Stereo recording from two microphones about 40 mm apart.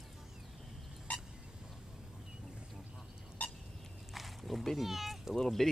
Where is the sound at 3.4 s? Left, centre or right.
Left.